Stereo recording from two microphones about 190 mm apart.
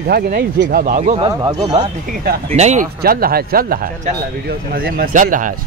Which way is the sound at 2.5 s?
35° right (ahead or behind).